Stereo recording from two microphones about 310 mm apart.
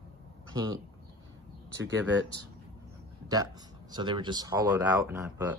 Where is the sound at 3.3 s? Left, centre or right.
Centre.